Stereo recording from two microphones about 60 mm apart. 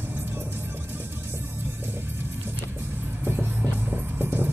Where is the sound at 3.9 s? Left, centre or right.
Right.